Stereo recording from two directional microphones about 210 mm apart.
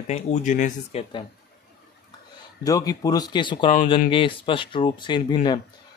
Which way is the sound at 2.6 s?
15° left (ahead or behind).